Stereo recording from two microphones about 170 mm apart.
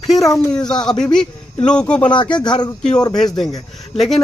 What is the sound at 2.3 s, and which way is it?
Speech, 25° left (ahead or behind).